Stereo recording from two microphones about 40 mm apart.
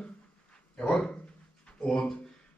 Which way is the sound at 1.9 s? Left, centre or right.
Centre.